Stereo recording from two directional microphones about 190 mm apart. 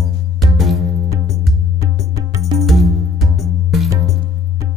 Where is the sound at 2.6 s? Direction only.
Centre (ahead or behind).